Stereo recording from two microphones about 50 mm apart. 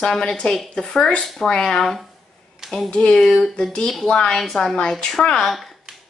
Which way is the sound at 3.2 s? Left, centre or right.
Centre.